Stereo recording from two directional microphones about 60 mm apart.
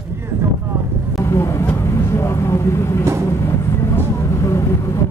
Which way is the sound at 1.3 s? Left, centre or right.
Left.